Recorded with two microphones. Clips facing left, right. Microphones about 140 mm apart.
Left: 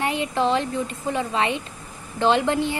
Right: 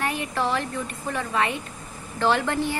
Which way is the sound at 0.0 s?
20° left (ahead or behind).